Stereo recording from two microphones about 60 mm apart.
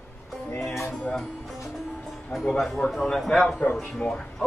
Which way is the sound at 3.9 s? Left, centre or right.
Centre.